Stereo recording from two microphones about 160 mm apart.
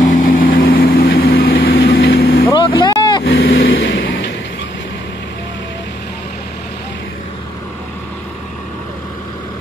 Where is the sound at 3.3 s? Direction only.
90° left.